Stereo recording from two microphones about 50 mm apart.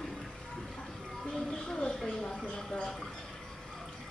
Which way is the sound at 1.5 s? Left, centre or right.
Centre.